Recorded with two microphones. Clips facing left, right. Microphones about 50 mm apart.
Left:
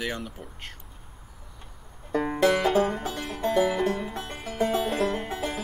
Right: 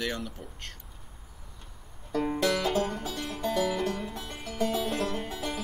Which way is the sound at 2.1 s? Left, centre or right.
Left.